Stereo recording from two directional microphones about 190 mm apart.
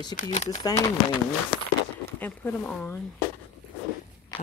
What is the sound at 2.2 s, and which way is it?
Speech, 10° left (ahead or behind).